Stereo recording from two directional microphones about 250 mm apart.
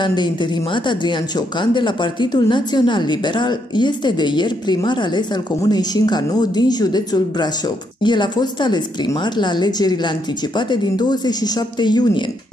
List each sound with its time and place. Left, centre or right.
0.0 s a woman's voice: centre